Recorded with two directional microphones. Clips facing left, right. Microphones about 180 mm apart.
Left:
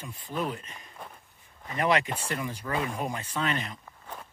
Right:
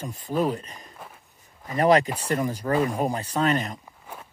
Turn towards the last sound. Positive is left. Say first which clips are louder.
# right 7 dB
turn(degrees=-40)  # may be behind; listen again after turning